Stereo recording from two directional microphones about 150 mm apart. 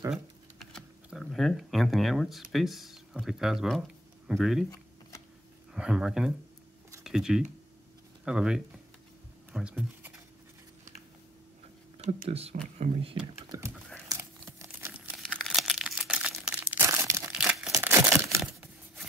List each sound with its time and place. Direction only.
0.1 s a sound: centre (ahead or behind)
2.5 s speech: centre (ahead or behind)
5.7 s speech: 5° right (ahead or behind)
9.5 s a sound: 5° right (ahead or behind)
12.0 s speech: 45° right (ahead or behind)
13.5 s speech: 20° right (ahead or behind)
14.0 s crumpling: 20° right (ahead or behind)
17.3 s crumpling: 5° right (ahead or behind)
17.8 s a sound: 15° right (ahead or behind)
18.4 s tearing: centre (ahead or behind)